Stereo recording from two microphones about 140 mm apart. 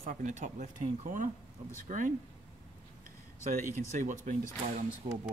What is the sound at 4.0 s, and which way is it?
Speech, 65° right (ahead or behind).